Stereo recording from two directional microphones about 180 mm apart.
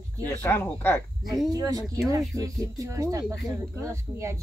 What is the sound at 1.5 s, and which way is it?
Speech, 20° right (ahead or behind).